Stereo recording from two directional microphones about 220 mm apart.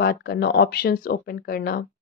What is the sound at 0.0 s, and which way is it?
Speech, 45° left (ahead or behind).